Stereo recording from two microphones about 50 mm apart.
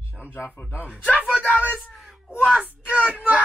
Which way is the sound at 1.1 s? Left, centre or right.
Right.